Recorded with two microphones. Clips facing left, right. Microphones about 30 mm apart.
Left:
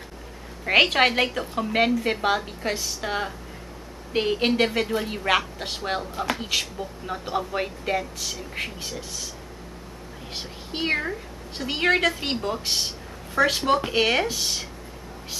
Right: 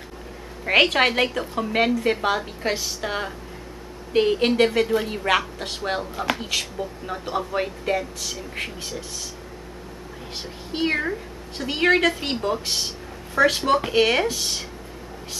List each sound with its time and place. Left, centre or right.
0.7 s speech: centre
2.6 s a woman's voice: centre
3.0 s speech: centre
10.7 s a woman's voice: centre